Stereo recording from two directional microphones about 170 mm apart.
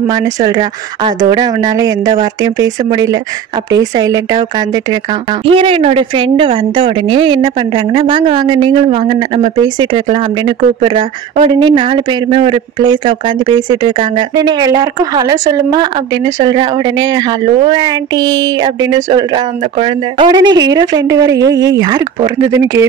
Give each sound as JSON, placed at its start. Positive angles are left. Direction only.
{"t": 0.1, "sound": "a woman's voice", "side_deg": -25}
{"t": 5.4, "sound": "a woman's voice", "side_deg": -30}